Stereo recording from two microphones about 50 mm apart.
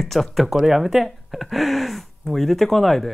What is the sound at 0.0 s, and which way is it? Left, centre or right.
Speech, centre.